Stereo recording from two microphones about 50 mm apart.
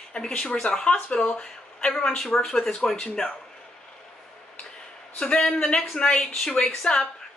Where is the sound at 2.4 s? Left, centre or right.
Centre.